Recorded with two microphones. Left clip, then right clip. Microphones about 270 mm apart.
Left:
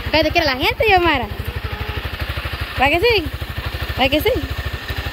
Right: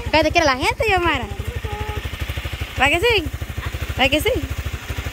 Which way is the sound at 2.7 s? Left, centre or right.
Centre.